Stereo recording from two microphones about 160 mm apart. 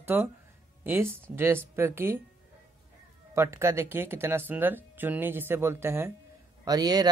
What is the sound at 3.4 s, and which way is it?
Speech, 15° right (ahead or behind).